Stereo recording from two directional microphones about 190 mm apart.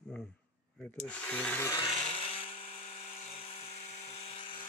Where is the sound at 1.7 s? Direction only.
25° left (ahead or behind).